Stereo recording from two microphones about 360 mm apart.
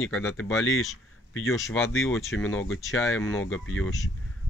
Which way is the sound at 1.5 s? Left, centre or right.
Centre.